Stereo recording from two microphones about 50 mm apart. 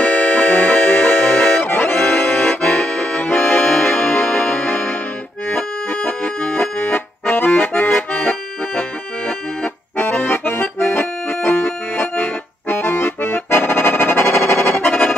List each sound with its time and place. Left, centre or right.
0.0 s accordion: left
4.6 s music: left
6.5 s accordion: left
8.1 s accordion: left
9.9 s accordion: left
12.0 s music: left
12.6 s accordion: left